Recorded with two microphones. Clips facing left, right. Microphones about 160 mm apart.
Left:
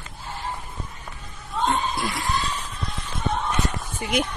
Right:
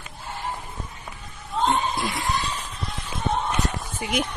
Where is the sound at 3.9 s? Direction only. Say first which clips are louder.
Left 2 dB; 10° right (ahead or behind).